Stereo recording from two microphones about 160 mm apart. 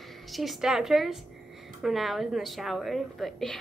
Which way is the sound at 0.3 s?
Centre (ahead or behind).